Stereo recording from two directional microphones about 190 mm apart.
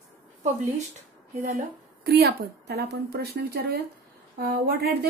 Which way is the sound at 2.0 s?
55° right (ahead or behind).